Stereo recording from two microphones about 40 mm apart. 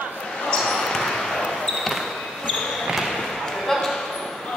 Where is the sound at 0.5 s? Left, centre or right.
Centre.